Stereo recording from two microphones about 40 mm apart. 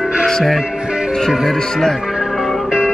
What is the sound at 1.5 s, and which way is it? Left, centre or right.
Speech, centre.